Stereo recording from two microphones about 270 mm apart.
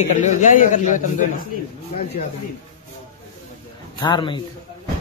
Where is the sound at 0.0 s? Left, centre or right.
Left.